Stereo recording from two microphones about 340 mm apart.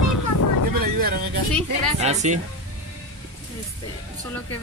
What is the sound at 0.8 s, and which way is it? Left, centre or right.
Vehicle, right.